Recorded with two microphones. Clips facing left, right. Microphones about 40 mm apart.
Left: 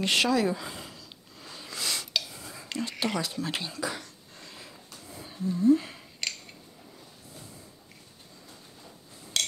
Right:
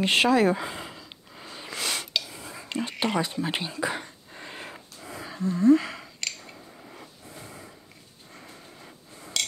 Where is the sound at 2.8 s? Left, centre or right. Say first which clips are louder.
Right 3 dB; right.